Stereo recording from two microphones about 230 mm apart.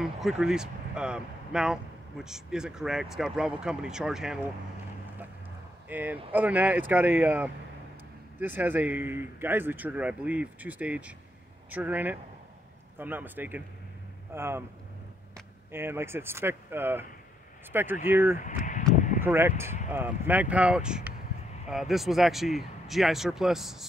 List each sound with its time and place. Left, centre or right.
0.0 s speech: centre
5.9 s speech: centre
15.7 s speech: centre
18.0 s speech: centre
18.4 s a sound: left
19.2 s speech: centre